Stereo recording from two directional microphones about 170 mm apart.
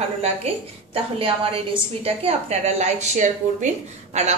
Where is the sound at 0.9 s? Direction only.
35° right (ahead or behind).